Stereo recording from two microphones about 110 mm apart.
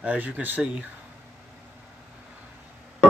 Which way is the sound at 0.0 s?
15° right (ahead or behind).